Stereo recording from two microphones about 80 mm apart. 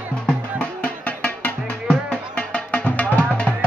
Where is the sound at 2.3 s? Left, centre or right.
Centre.